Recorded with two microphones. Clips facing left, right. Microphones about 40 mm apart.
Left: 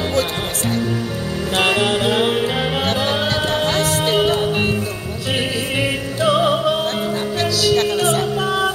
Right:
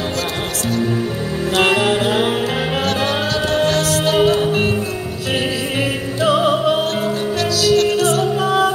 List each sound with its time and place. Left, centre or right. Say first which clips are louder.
1.6 s music: right 2 dB; centre
3.5 s music: right 2 dB; left
4.4 s music: right 2 dB; centre
6.2 s opera: right 1 dB; centre
7.7 s music: right 4 dB; left
8.4 s music: right 3 dB; centre